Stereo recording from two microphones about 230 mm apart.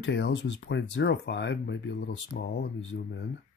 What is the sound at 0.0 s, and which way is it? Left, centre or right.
Speech, left.